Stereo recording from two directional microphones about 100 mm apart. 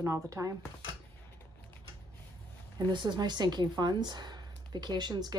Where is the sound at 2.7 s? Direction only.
50° right (ahead or behind).